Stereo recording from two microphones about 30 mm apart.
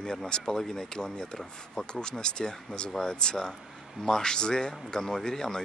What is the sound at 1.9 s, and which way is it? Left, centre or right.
Speech, left.